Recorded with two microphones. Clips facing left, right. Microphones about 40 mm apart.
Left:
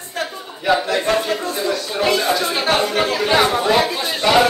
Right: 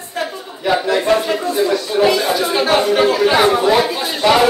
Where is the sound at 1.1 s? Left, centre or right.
Right.